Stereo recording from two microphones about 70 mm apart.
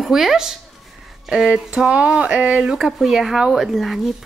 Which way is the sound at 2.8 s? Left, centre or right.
Centre.